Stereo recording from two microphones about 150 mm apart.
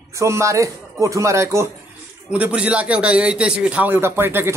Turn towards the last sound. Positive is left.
turn(degrees=-15)  # may be behind; listen again after turning